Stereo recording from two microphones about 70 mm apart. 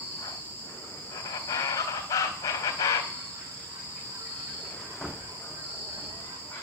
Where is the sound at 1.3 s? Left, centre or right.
Left.